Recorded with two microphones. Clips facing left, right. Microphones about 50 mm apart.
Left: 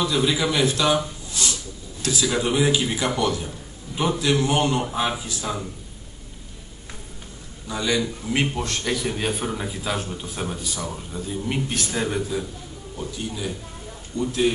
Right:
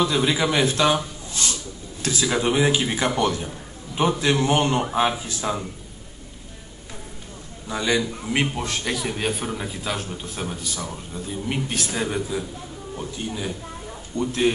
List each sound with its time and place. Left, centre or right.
0.0 s a man's voice: right
3.4 s a sound: centre
4.2 s a man's voice: right
7.7 s a man's voice: centre
12.9 s a man's voice: centre
14.2 s speech: right